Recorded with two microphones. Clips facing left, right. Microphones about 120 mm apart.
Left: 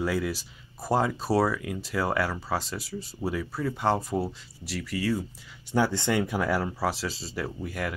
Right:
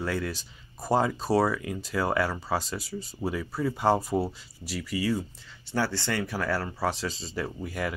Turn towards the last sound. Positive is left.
turn(degrees=0)  # may be behind; listen again after turning